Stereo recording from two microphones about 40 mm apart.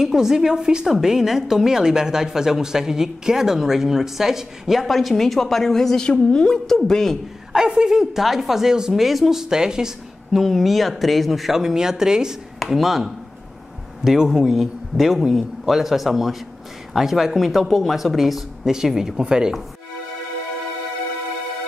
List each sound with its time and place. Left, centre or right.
0.0 s a woman's voice: centre
0.8 s a woman's voice: centre
4.8 s a woman's voice: centre
7.5 s a woman's voice: centre
9.4 s a woman's voice: centre
10.4 s speech: centre
12.5 s a woman's voice: centre